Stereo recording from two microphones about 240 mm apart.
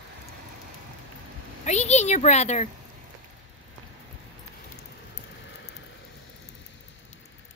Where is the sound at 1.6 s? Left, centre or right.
Left.